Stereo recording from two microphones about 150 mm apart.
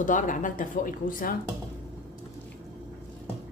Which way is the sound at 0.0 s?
60° left (ahead or behind).